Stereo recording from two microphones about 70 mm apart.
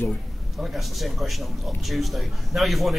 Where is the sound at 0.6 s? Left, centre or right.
Centre.